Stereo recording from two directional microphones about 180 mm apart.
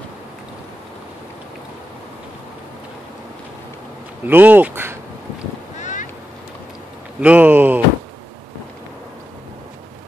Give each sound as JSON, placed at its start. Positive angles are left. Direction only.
{"t": 4.3, "sound": "speech", "side_deg": -10}
{"t": 5.8, "sound": "boat", "side_deg": 45}
{"t": 7.2, "sound": "speech", "side_deg": -10}